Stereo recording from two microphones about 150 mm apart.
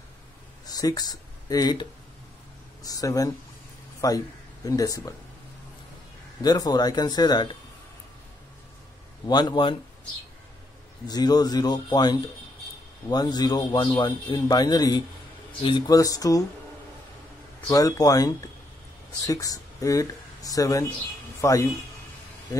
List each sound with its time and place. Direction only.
0.7 s a man's voice: 25° left (ahead or behind)
6.4 s a man's voice: 25° left (ahead or behind)
9.2 s a man's voice: 30° left (ahead or behind)
11.1 s a man's voice: 25° left (ahead or behind)
17.6 s a man's voice: 25° left (ahead or behind)